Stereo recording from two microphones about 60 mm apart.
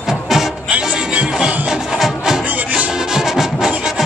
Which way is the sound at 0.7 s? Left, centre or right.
Right.